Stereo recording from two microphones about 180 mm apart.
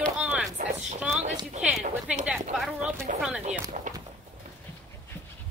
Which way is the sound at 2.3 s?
Centre (ahead or behind).